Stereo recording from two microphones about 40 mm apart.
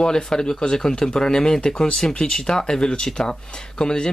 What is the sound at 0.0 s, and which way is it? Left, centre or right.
Speech, centre.